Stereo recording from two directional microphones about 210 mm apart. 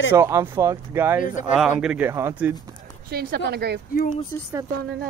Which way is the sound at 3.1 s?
45° right (ahead or behind).